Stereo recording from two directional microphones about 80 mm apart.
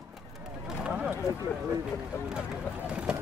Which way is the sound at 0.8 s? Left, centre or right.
Centre.